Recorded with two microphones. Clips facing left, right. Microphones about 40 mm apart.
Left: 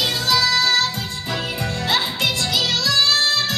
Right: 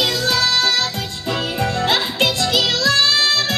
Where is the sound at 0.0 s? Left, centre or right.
Right.